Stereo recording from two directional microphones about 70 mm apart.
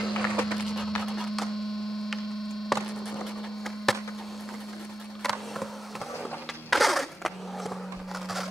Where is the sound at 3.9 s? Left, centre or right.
Centre.